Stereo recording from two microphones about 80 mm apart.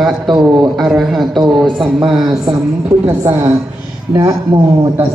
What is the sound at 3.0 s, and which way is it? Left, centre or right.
Speech, right.